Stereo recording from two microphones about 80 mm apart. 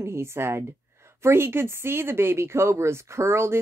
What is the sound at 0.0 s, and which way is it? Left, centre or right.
Speech, right.